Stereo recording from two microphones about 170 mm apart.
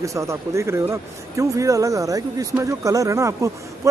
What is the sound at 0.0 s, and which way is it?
Speech, 20° right (ahead or behind).